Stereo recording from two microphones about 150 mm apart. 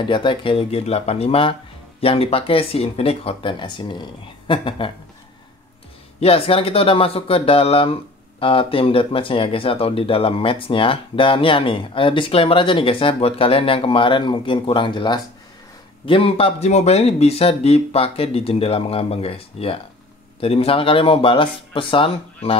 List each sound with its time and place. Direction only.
0.0 s speech: 35° left (ahead or behind)
6.1 s speech: 40° left (ahead or behind)